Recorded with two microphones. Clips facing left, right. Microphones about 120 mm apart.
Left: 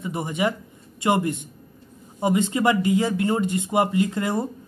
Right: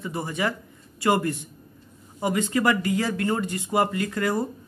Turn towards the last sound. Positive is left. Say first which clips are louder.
# left 2 dB
turn(degrees=25)  # may be behind; listen again after turning